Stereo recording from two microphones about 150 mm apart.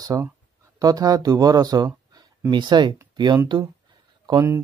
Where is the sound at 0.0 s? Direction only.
25° right (ahead or behind).